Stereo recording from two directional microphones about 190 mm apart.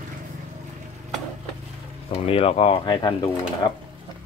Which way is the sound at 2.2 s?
30° left (ahead or behind).